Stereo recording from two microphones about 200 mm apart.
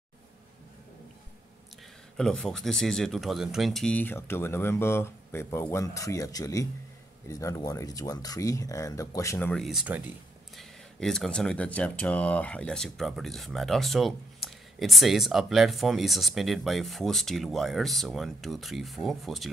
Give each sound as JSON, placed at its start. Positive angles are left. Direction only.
{"t": 2.1, "sound": "speech", "side_deg": 5}